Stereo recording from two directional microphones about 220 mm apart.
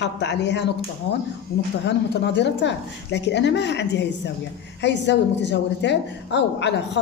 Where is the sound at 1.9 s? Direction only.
50° left (ahead or behind).